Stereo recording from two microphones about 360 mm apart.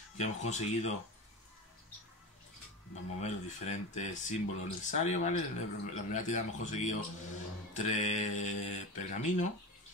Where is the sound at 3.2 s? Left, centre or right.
Centre.